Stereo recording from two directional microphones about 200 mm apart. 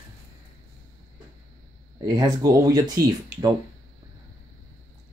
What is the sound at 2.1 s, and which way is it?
Speech, 20° right (ahead or behind).